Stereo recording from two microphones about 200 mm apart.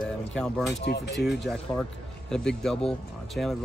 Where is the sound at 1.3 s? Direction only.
Centre (ahead or behind).